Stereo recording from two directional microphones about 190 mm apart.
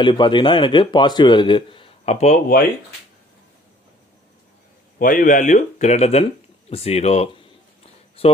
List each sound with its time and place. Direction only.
0.0 s a man's voice: 25° left (ahead or behind); by 2.6 s 45° left (ahead or behind)
4.9 s speech: 45° left (ahead or behind); by 8.3 s 30° left (ahead or behind)